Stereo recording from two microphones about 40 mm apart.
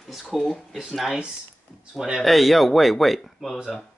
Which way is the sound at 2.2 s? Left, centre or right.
Centre.